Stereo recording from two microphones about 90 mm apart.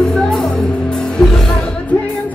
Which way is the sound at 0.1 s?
5° left (ahead or behind).